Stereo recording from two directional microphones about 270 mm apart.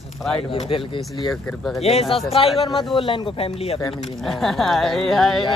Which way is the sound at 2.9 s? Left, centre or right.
Centre.